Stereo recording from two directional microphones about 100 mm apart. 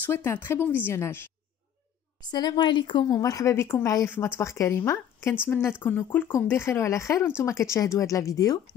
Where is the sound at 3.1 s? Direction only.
35° left (ahead or behind).